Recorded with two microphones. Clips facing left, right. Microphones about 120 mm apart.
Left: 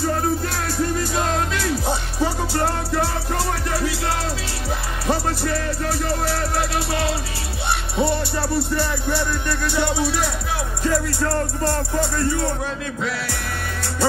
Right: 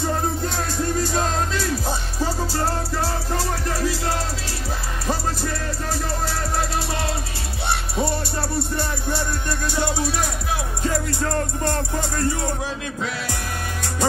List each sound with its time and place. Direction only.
8.0 s music: 25° left (ahead or behind)
10.8 s music: 25° right (ahead or behind)